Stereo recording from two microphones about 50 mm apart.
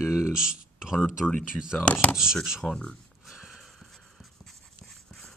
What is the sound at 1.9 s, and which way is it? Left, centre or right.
Speech, left.